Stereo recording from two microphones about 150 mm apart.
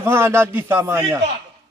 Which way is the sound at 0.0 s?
15° right (ahead or behind).